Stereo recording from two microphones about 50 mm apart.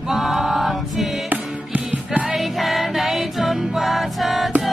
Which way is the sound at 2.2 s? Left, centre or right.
Centre.